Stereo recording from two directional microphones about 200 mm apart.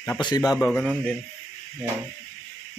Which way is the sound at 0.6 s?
5° left (ahead or behind).